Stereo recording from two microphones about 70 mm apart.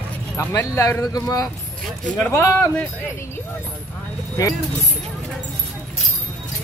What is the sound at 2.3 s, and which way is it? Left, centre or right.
Speech, left.